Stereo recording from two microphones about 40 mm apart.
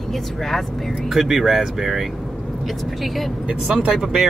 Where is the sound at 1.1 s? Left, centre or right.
Centre.